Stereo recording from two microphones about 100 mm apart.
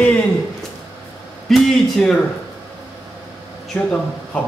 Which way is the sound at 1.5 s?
5° left (ahead or behind).